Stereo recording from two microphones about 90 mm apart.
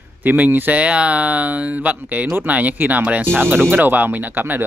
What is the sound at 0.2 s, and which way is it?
Speech, 20° right (ahead or behind).